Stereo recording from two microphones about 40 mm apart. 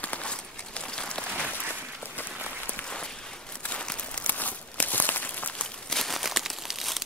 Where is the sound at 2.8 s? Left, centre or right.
Left.